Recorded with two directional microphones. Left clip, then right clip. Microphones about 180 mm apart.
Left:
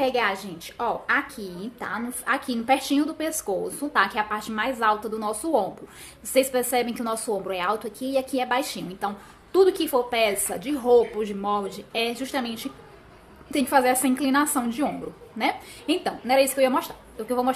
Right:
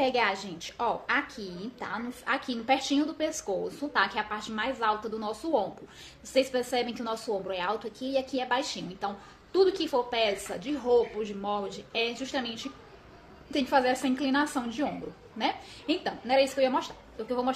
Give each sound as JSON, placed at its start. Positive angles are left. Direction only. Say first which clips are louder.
{"t": 0.0, "sound": "a woman's voice", "louder": "left 3 dB", "side_deg": 0}